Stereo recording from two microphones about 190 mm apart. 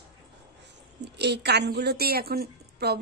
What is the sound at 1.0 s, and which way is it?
A woman's voice, 60° right (ahead or behind).